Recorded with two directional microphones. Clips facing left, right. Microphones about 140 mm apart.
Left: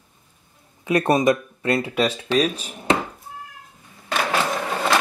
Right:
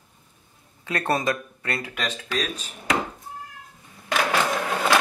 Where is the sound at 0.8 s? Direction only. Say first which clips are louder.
Left 7 dB; 20° left (ahead or behind).